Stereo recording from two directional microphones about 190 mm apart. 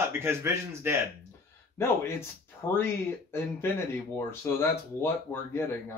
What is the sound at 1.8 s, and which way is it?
Speech, 15° left (ahead or behind).